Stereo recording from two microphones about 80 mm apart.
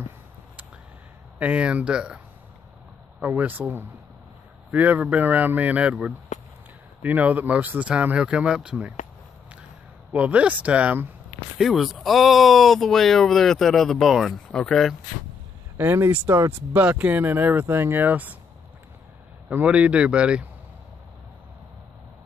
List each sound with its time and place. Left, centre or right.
1.4 s speech: centre
10.1 s speech: centre
11.5 s speech: centre
15.8 s speech: right
17.0 s speech: right
19.6 s speech: centre